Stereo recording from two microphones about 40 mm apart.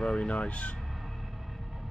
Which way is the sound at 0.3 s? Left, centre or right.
Left.